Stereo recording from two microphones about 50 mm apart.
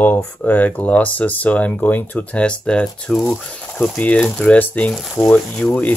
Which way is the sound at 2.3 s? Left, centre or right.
Left.